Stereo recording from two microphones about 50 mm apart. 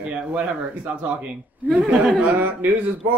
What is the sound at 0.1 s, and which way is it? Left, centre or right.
Speech, right.